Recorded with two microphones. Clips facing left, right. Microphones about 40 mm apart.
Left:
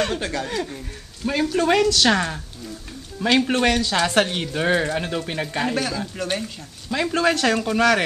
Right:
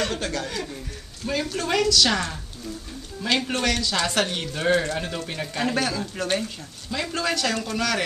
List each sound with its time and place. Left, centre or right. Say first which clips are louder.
0.1 s speech: left 3 dB; centre
5.8 s speech: even; centre
6.9 s speech: left 6 dB; left